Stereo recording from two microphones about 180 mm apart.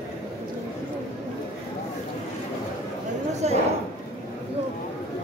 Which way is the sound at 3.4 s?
40° right (ahead or behind).